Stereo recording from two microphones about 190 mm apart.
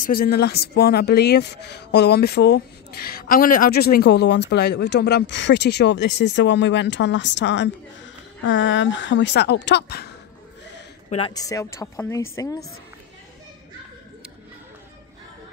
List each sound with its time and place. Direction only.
0.0 s speech: 50° left (ahead or behind); by 7.7 s 65° left (ahead or behind)
8.5 s a woman's voice: 80° left; by 10.0 s 60° left (ahead or behind)
11.1 s speech: 30° left (ahead or behind)